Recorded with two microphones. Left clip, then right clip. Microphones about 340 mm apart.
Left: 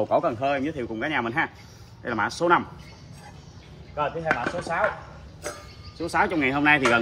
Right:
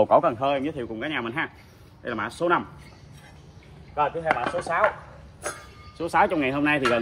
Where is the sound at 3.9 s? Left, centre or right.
Right.